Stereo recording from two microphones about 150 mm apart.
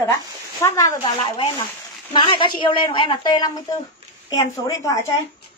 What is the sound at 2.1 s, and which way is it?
A woman's voice, 35° left (ahead or behind).